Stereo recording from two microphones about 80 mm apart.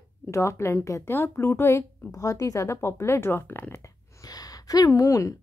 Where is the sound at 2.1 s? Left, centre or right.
Left.